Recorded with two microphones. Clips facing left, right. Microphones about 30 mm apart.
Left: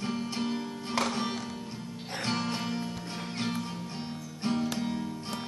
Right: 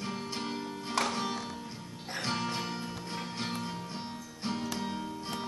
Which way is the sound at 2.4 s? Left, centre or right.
Centre.